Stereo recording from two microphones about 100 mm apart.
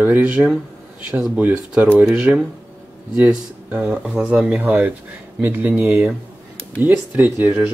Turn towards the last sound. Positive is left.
turn(degrees=-20)  # may be behind; listen again after turning